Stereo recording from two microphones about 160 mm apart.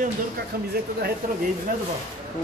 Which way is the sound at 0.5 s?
65° right (ahead or behind).